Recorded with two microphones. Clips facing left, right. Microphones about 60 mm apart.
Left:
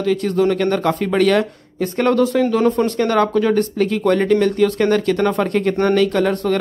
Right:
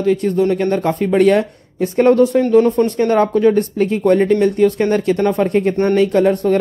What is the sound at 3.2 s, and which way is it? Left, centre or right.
A man's voice, centre.